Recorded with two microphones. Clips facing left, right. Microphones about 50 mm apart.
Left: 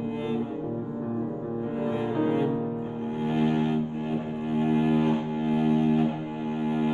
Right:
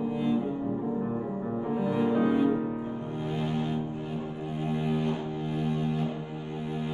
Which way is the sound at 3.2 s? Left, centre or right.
Left.